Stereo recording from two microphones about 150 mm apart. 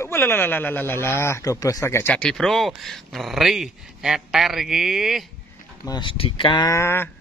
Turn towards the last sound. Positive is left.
turn(degrees=15)  # may be behind; listen again after turning